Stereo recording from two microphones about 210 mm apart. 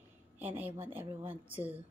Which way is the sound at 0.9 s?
10° right (ahead or behind).